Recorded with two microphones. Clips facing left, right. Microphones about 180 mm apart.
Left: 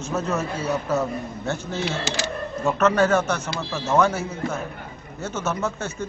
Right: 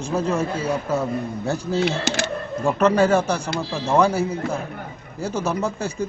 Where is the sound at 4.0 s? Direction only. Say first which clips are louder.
Right 3 dB; 30° right (ahead or behind).